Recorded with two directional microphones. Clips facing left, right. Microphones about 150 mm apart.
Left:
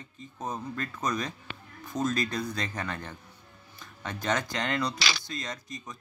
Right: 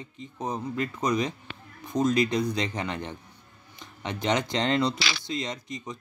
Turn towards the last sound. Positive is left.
turn(degrees=-20)  # may be behind; listen again after turning